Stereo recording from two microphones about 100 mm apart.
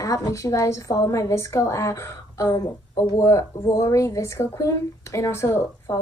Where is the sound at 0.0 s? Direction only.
35° left (ahead or behind).